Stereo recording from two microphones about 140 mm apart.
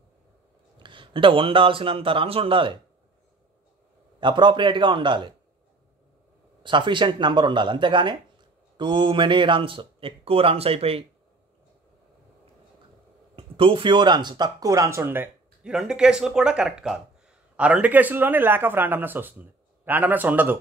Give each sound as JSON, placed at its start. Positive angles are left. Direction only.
{"t": 0.7, "sound": "speech", "side_deg": -35}
{"t": 4.2, "sound": "speech", "side_deg": -35}
{"t": 6.6, "sound": "speech", "side_deg": -35}
{"t": 13.4, "sound": "speech", "side_deg": -40}